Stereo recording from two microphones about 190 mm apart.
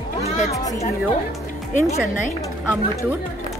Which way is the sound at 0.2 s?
35° left (ahead or behind).